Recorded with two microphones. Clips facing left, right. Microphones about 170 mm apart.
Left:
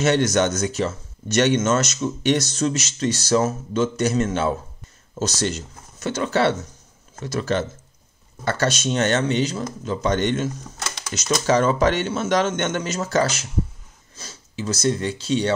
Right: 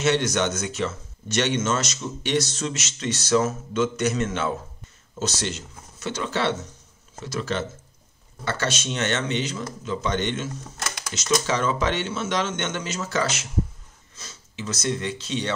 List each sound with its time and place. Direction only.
0.0 s speech: 45° left (ahead or behind)